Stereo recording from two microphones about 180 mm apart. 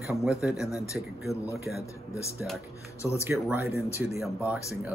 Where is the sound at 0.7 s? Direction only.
15° left (ahead or behind).